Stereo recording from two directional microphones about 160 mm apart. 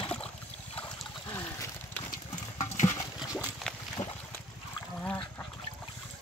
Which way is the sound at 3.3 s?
Centre (ahead or behind).